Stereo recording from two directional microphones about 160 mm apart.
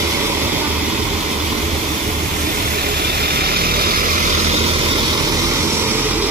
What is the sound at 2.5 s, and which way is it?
Vehicle, 70° right (ahead or behind).